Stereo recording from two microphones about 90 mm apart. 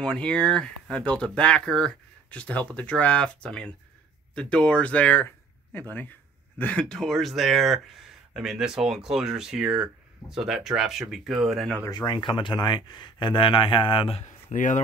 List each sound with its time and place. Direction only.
0.0 s speech: 10° left (ahead or behind)
11.9 s speech: 50° left (ahead or behind); by 14.1 s 70° left (ahead or behind)